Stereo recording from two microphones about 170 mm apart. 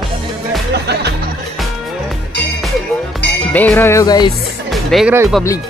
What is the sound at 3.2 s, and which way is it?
Music, 90° left.